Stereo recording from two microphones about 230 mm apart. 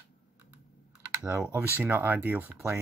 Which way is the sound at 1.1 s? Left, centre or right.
Centre.